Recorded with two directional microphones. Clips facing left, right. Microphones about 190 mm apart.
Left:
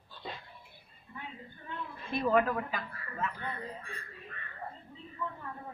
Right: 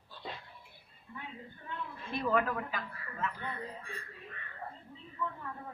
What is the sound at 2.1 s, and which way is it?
Speech, 15° left (ahead or behind).